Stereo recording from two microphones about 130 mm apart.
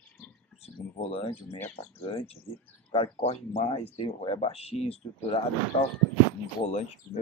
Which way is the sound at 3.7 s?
45° left (ahead or behind).